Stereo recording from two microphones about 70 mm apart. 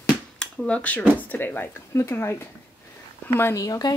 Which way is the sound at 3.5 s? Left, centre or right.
Left.